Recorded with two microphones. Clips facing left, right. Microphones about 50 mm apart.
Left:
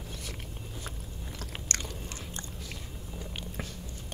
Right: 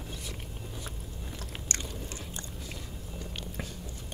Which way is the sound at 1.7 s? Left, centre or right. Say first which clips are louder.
Left 1 dB; left.